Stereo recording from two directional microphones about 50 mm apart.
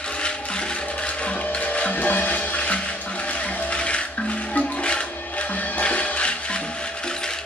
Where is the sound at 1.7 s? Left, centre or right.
Left.